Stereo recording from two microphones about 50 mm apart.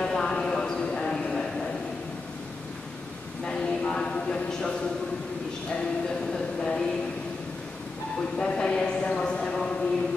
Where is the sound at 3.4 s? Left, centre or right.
Left.